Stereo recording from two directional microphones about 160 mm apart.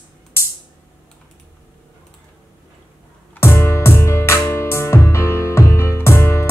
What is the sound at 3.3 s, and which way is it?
Music, 15° left (ahead or behind).